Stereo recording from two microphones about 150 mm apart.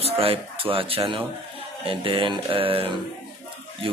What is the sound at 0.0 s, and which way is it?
Speech, 40° right (ahead or behind).